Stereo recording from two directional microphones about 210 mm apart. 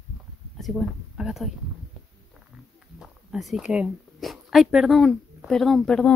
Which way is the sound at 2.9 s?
Centre (ahead or behind).